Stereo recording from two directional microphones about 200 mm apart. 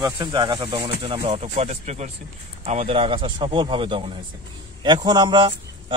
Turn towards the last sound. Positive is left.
turn(degrees=-25)  # may be behind; listen again after turning